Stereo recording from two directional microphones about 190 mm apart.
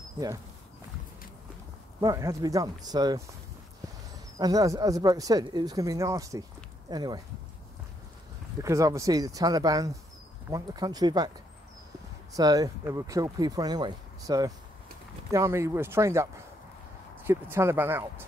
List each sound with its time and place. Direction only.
2.0 s speech: 20° right (ahead or behind)
4.4 s speech: 20° right (ahead or behind)
8.6 s speech: 15° right (ahead or behind)
12.4 s speech: 20° right (ahead or behind)